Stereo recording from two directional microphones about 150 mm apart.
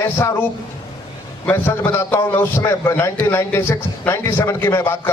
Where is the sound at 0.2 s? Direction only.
20° left (ahead or behind).